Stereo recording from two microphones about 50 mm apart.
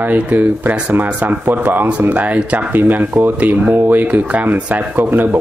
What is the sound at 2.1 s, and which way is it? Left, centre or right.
Speech, right.